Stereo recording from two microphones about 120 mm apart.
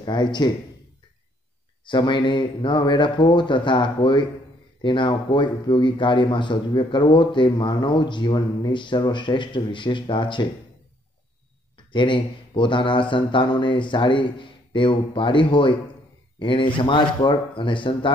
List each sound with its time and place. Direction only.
0.0 s a man's voice: 40° left (ahead or behind)
1.9 s speech: 40° left (ahead or behind)
11.7 s a man's voice: 40° left (ahead or behind)